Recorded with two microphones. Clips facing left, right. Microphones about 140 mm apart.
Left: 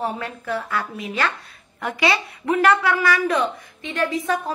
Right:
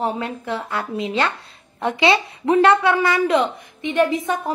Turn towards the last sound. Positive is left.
turn(degrees=-20)  # may be behind; listen again after turning